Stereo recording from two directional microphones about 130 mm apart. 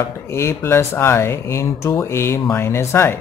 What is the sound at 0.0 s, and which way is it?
Speech, 20° left (ahead or behind).